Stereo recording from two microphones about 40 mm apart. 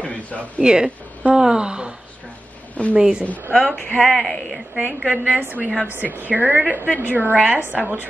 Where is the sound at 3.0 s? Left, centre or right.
Centre.